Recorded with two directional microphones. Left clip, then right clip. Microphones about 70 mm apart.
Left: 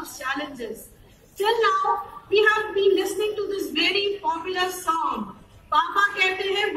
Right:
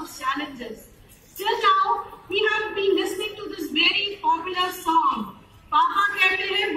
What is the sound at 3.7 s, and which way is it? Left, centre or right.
A woman's voice, left.